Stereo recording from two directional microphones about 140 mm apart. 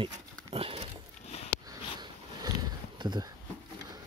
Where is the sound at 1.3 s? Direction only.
50° left (ahead or behind).